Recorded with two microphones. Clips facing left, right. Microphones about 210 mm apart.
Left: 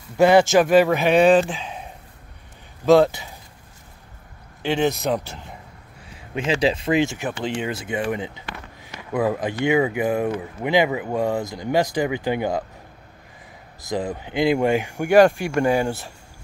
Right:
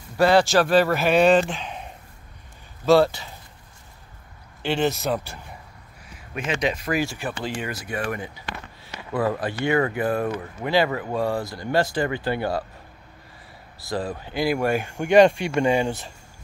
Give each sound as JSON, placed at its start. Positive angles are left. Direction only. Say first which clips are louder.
{"t": 0.2, "sound": "speech", "louder": "left 3 dB", "side_deg": 20}
{"t": 0.8, "sound": "speech", "louder": "left 2 dB", "side_deg": 0}
{"t": 2.8, "sound": "speech", "louder": "left 2 dB", "side_deg": 15}
{"t": 4.8, "sound": "speech", "louder": "left 2 dB", "side_deg": 15}
{"t": 6.1, "sound": "speech", "louder": "left 5 dB", "side_deg": 25}
{"t": 13.8, "sound": "speech", "louder": "left 2 dB", "side_deg": 15}